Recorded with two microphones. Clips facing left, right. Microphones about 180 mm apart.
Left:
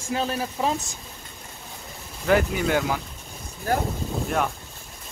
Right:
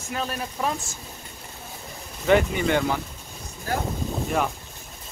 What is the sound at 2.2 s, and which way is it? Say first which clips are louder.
Speech: right 1 dB; centre (ahead or behind).